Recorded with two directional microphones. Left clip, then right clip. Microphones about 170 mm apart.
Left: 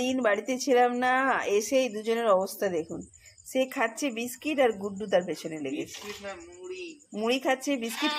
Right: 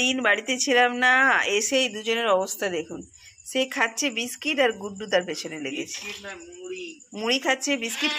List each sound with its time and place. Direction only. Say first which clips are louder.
0.0 s a woman's voice: right 4 dB; 5° left (ahead or behind)
6.0 s speech: right 3 dB; 20° left (ahead or behind)
7.2 s a woman's voice: right 3 dB; centre (ahead or behind)